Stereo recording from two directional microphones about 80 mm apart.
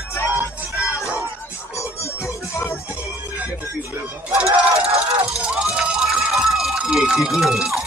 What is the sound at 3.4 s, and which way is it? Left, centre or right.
Music, right.